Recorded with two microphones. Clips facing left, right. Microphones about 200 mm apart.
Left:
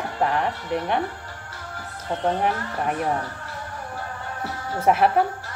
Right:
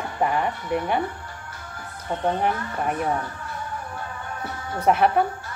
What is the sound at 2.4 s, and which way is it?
Speech, centre (ahead or behind).